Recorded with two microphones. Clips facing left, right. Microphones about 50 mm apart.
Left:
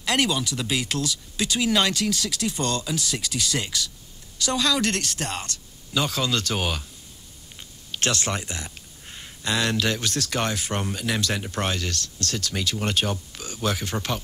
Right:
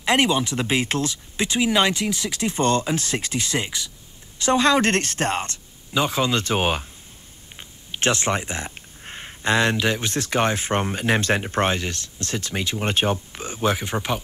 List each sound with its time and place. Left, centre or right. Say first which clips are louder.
0.0 s speech: right 4 dB; right